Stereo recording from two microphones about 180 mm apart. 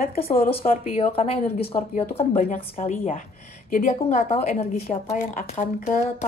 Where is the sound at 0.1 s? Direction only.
35° left (ahead or behind).